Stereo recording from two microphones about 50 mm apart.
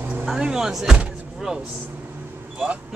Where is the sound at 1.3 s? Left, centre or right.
Centre.